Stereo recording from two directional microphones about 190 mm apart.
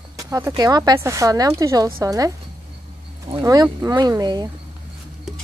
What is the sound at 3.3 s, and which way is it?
Speech, 20° right (ahead or behind).